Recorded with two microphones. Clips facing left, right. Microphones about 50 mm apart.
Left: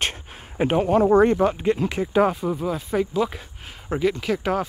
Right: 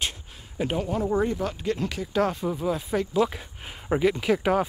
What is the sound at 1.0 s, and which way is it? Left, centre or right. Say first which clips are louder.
Speech: left 9 dB; left.